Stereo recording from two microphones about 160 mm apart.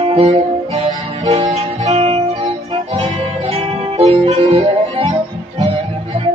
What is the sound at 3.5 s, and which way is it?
Music, 40° right (ahead or behind).